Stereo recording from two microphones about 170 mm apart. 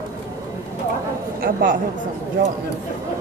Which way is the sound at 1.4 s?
55° right (ahead or behind).